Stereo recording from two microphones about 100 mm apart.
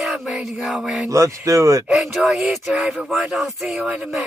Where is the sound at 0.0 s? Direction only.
Centre (ahead or behind).